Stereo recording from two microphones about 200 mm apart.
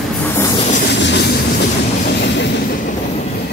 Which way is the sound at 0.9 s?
60° left (ahead or behind).